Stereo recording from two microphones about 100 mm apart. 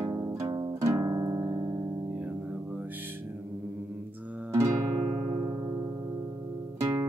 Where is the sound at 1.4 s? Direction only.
30° right (ahead or behind).